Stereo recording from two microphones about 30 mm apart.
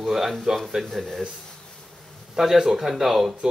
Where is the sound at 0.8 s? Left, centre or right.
Centre.